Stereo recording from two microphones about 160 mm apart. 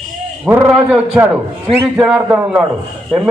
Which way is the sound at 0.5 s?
10° right (ahead or behind).